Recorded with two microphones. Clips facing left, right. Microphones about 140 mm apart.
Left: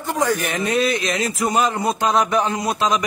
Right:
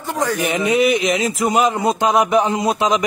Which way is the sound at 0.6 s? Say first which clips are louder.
Right 4 dB; 15° right (ahead or behind).